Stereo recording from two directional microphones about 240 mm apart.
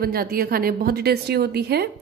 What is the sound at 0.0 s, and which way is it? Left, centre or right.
A woman's voice, right.